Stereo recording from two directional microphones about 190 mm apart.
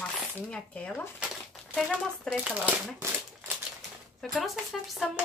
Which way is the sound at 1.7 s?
5° right (ahead or behind).